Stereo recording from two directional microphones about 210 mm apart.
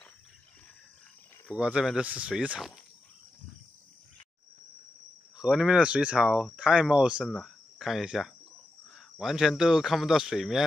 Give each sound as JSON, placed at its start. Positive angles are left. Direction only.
{"t": 1.5, "sound": "speech", "side_deg": -5}
{"t": 5.4, "sound": "speech", "side_deg": -5}